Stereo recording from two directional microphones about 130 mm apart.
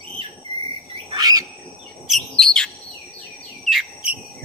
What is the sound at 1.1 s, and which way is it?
Bird, 30° right (ahead or behind).